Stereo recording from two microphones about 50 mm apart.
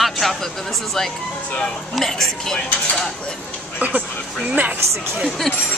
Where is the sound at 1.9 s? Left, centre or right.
Centre.